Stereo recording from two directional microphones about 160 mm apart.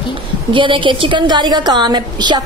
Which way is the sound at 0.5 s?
30° right (ahead or behind).